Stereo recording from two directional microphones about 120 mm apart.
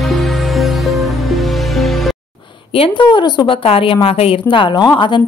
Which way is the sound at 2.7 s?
45° left (ahead or behind).